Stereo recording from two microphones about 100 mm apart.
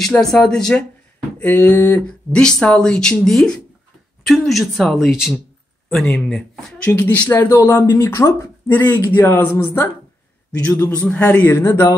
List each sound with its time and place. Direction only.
0.0 s speech: 5° left (ahead or behind)
1.4 s speech: 15° left (ahead or behind); by 5.4 s 5° right (ahead or behind)
6.0 s speech: 10° left (ahead or behind)
6.9 s speech: 15° left (ahead or behind)
10.7 s speech: 20° left (ahead or behind)